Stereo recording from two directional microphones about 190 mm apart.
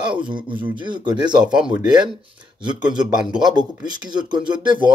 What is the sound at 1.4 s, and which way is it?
Speech, 5° right (ahead or behind).